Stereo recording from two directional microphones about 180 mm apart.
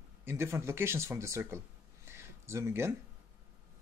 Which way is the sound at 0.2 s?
15° right (ahead or behind).